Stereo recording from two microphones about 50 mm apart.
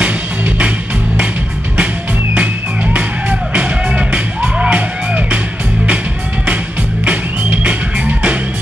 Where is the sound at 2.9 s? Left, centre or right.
Right.